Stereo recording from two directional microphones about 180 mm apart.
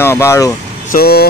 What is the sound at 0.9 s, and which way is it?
Speech, 60° left (ahead or behind).